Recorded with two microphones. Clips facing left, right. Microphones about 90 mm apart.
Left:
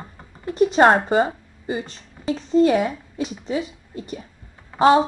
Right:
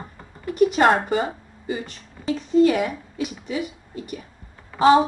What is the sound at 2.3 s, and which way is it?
Speech, 30° left (ahead or behind).